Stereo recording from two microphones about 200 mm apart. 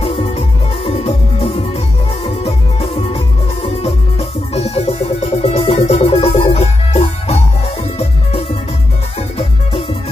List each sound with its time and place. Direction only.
0.8 s music: 30° left (ahead or behind)